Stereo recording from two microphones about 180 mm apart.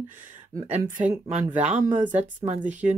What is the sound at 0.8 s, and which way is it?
Speech, 45° right (ahead or behind).